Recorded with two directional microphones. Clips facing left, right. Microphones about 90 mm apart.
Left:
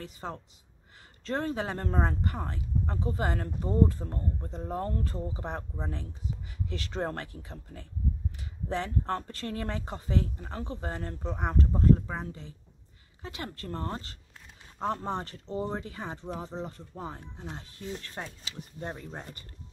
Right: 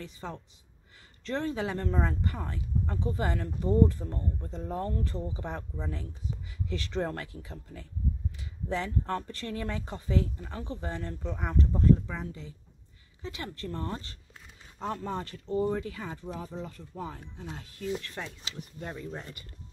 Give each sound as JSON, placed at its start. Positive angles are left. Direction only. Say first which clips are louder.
{"t": 0.0, "sound": "speech", "louder": "left 1 dB", "side_deg": 35}